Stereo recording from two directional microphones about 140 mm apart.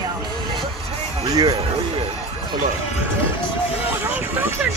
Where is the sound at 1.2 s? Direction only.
25° right (ahead or behind).